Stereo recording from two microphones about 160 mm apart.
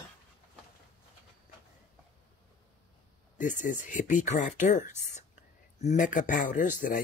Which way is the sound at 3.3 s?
50° left (ahead or behind).